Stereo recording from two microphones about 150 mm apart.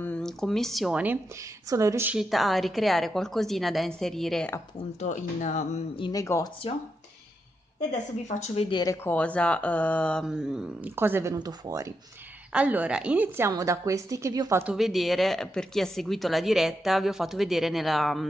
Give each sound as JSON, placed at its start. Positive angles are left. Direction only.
{"t": 0.0, "sound": "a woman's voice", "side_deg": 5}
{"t": 2.0, "sound": "speech", "side_deg": 0}
{"t": 5.0, "sound": "speech", "side_deg": 55}
{"t": 5.9, "sound": "speech", "side_deg": 30}
{"t": 6.2, "sound": "speech", "side_deg": 20}
{"t": 8.3, "sound": "speech", "side_deg": 50}
{"t": 8.6, "sound": "speech", "side_deg": 30}
{"t": 8.9, "sound": "speech", "side_deg": 10}
{"t": 10.2, "sound": "speech", "side_deg": -5}
{"t": 11.0, "sound": "a woman's voice", "side_deg": -15}
{"t": 11.3, "sound": "a woman's voice", "side_deg": -25}
{"t": 12.5, "sound": "a woman's voice", "side_deg": -10}
{"t": 13.5, "sound": "a woman's voice", "side_deg": -20}
{"t": 14.7, "sound": "speech", "side_deg": 0}